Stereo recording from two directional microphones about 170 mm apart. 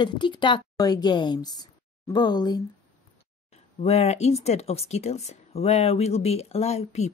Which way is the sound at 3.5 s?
40° left (ahead or behind).